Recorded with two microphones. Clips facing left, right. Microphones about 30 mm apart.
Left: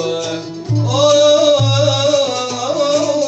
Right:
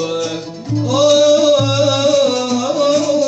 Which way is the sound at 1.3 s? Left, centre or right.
Left.